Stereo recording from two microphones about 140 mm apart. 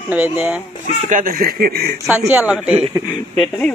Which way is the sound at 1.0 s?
80° right.